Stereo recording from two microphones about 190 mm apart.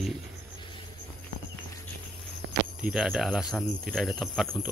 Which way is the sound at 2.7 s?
5° right (ahead or behind).